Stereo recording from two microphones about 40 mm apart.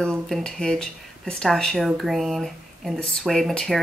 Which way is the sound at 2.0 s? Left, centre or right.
Centre.